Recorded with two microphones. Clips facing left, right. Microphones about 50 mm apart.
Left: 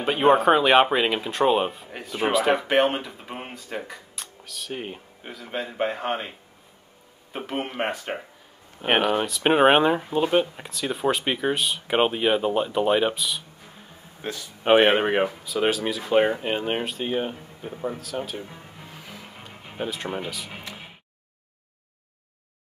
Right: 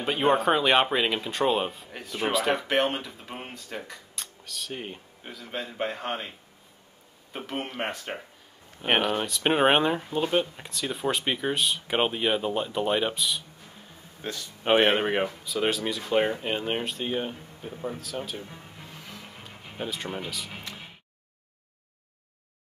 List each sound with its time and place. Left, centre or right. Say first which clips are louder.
0.0 s speech: left 5 dB; centre
7.3 s speech: left 4 dB; centre
14.2 s speech: left 4 dB; centre
17.9 s speech: left 3 dB; centre
18.4 s music: left 3 dB; centre